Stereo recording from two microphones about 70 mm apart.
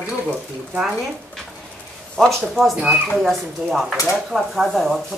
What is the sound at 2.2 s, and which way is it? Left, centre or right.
Speech, centre.